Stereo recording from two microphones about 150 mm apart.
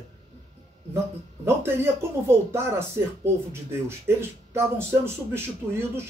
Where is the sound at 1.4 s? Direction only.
15° right (ahead or behind).